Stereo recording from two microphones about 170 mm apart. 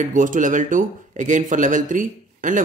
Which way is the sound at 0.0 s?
50° right (ahead or behind).